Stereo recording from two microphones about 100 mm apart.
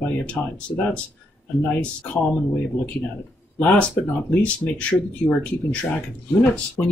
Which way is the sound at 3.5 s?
15° left (ahead or behind).